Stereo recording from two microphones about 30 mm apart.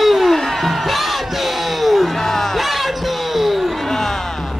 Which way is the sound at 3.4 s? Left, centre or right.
Centre.